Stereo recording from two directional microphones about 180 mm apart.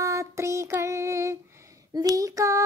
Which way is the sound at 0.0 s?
15° right (ahead or behind).